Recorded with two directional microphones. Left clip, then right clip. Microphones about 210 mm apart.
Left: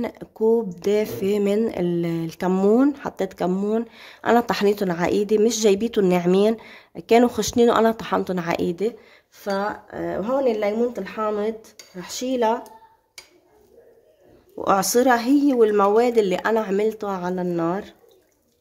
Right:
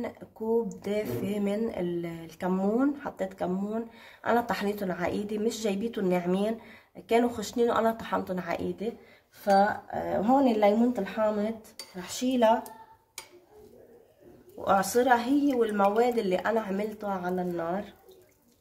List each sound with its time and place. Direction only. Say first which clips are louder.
0.2 s a sound: left 8 dB; 45° left (ahead or behind)
0.7 s speech: left 9 dB; 45° left (ahead or behind)
14.6 s speech: left 6 dB; 50° left (ahead or behind)